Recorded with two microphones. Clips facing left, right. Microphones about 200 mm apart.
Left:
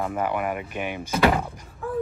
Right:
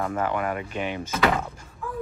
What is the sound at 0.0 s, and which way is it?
Speech, 10° left (ahead or behind).